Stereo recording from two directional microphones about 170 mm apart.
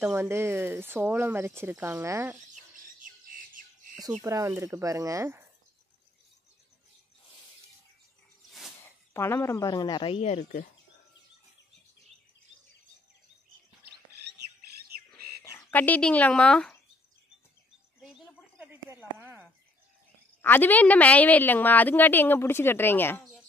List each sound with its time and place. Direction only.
0.0 s speech: 15° right (ahead or behind)
3.0 s bird: 55° right (ahead or behind)
4.2 s speech: 20° right (ahead or behind)
9.1 s speech: 15° left (ahead or behind); by 10.4 s 40° left (ahead or behind)
15.4 s speech: 10° left (ahead or behind)
18.0 s a sound: 5° right (ahead or behind)
20.4 s a woman's voice: 10° left (ahead or behind)